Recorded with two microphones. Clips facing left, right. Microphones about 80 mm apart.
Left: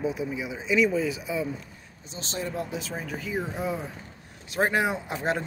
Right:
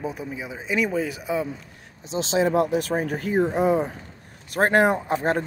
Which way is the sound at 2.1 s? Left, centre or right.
Right.